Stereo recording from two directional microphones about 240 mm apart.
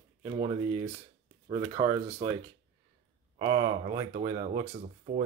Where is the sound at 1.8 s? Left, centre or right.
Right.